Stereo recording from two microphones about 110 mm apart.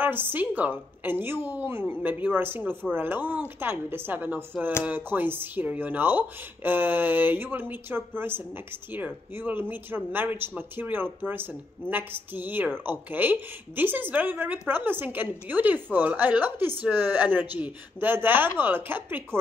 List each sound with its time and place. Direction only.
0.0 s a woman's voice: 20° right (ahead or behind)